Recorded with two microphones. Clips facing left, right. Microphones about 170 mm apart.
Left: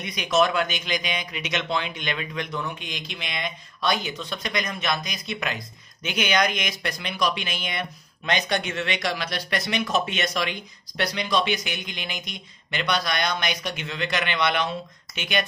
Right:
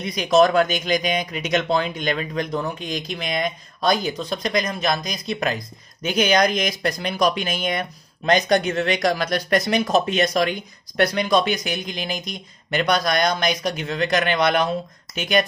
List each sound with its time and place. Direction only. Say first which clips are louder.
0.0 s speech: right 6 dB; 35° right (ahead or behind)